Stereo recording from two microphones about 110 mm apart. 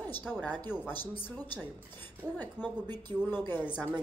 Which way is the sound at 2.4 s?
15° left (ahead or behind).